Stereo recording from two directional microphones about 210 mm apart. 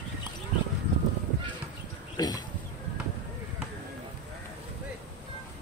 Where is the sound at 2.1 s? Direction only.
20° left (ahead or behind).